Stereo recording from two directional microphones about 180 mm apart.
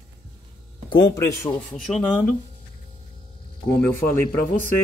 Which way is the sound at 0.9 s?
25° left (ahead or behind).